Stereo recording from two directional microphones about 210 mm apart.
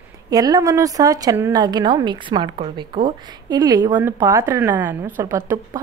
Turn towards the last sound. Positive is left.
turn(degrees=-15)  # may be behind; listen again after turning